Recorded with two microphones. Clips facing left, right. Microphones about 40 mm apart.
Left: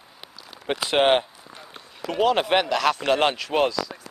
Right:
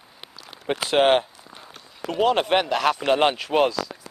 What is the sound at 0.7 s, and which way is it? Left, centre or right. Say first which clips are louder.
Speech: right 1 dB; centre.